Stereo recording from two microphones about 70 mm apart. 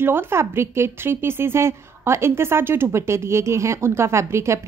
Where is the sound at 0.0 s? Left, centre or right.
Right.